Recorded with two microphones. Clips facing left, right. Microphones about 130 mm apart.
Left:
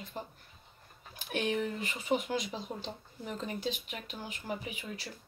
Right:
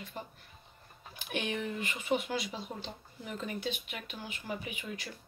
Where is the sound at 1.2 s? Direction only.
35° left (ahead or behind).